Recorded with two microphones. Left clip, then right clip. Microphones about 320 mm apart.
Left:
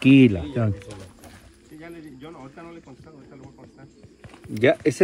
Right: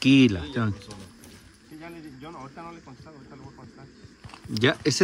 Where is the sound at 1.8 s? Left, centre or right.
Right.